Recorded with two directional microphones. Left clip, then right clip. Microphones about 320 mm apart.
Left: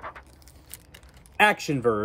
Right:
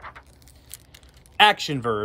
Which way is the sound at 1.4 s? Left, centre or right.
Centre.